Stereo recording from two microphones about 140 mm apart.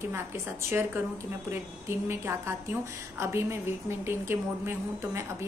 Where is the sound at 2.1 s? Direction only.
15° right (ahead or behind).